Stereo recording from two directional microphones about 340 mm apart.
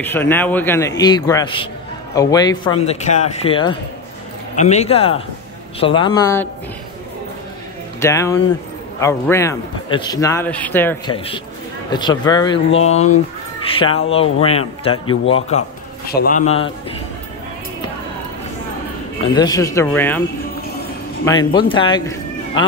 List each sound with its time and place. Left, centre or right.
0.0 s a man's voice: centre
8.0 s a man's voice: centre
16.2 s a man's voice: left
19.3 s a man's voice: centre
21.4 s a man's voice: centre